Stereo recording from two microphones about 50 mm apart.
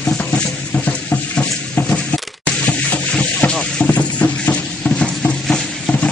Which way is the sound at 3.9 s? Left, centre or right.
Left.